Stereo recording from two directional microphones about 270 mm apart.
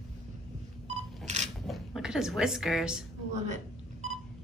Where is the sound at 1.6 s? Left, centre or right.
Centre.